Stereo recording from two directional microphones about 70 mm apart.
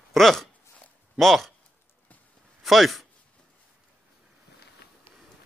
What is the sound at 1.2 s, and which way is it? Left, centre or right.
Speech, centre.